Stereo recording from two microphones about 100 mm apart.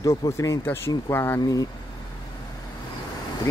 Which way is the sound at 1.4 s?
35° left (ahead or behind).